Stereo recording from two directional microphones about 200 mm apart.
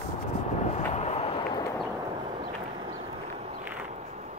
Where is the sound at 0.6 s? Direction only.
35° left (ahead or behind).